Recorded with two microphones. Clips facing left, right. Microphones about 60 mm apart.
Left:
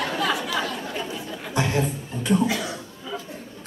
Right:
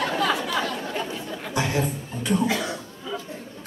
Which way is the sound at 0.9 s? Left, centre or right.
Right.